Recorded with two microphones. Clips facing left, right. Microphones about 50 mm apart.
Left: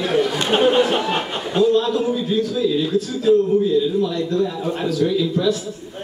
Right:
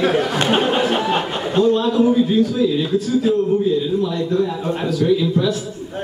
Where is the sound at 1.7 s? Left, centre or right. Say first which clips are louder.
Right 3 dB; right.